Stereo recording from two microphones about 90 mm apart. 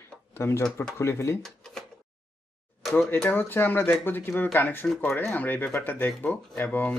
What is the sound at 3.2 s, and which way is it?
A man's voice, 25° left (ahead or behind).